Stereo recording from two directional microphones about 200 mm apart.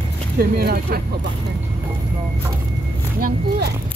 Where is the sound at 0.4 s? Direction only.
50° right (ahead or behind).